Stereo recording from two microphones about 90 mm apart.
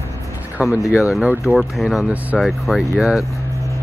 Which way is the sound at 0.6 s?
15° right (ahead or behind).